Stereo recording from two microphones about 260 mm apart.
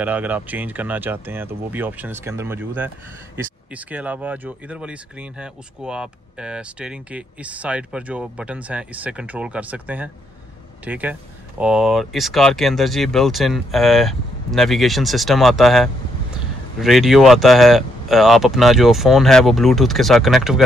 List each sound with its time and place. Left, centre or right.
0.0 s speech: centre